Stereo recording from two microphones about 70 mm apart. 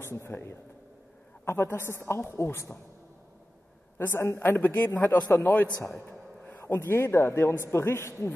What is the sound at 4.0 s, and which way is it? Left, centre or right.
A man's voice, left.